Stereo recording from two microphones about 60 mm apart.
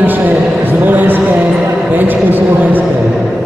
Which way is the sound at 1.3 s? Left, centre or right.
Right.